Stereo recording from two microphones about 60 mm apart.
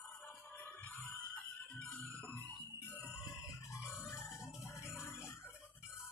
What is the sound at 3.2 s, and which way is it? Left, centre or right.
Music, left.